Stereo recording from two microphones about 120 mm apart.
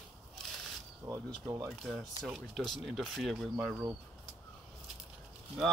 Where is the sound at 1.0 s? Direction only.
25° right (ahead or behind).